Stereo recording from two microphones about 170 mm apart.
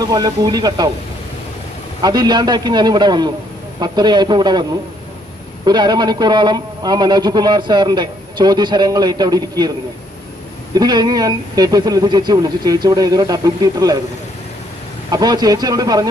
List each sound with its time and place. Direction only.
0.0 s a man's voice: 20° right (ahead or behind)
2.0 s a man's voice: 25° right (ahead or behind)
5.7 s a man's voice: 25° right (ahead or behind)
10.7 s a man's voice: 25° right (ahead or behind)
15.0 s a man's voice: 25° right (ahead or behind)